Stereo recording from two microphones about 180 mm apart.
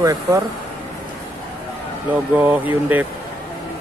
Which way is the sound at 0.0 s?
20° right (ahead or behind).